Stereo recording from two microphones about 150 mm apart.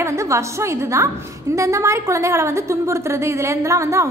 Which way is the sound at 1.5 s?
20° right (ahead or behind).